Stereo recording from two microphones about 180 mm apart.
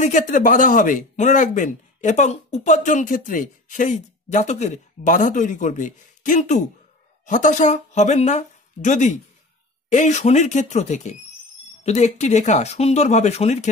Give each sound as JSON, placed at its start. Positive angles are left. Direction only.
{"t": 0.0, "sound": "speech", "side_deg": 45}